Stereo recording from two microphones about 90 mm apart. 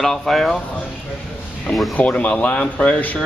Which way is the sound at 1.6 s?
5° left (ahead or behind).